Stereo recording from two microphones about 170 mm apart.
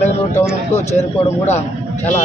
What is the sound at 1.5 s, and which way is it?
Speech, 40° left (ahead or behind).